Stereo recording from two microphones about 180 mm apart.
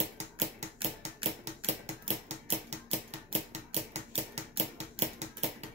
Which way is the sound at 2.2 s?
40° right (ahead or behind).